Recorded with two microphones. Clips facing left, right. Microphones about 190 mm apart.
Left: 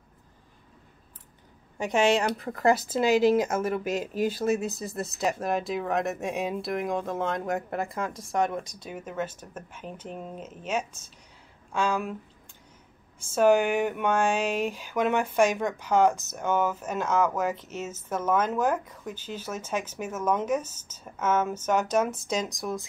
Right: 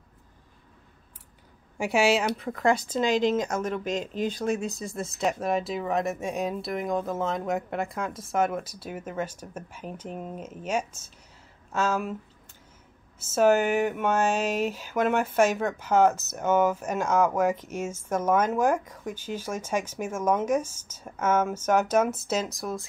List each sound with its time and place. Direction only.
1.8 s speech: 10° right (ahead or behind)
13.3 s speech: 5° right (ahead or behind)